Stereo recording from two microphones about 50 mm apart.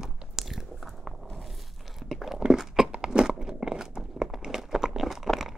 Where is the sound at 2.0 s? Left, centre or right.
Centre.